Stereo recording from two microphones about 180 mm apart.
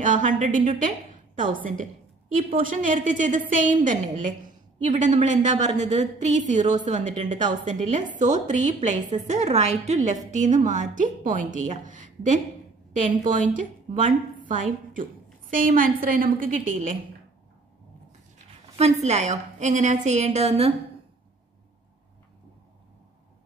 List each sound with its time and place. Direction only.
0.0 s a woman's voice: 45° right (ahead or behind)
18.8 s a woman's voice: 40° right (ahead or behind)